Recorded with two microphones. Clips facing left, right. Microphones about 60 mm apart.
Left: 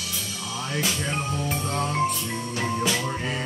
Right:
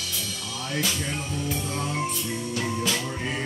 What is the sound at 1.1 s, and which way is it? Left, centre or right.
Music, left.